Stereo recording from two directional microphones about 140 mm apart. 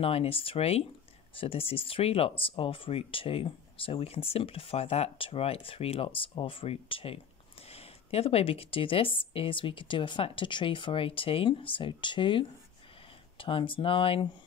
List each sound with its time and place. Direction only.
0.0 s speech: 45° left (ahead or behind)